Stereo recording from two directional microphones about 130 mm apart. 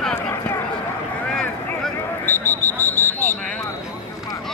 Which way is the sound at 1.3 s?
5° left (ahead or behind).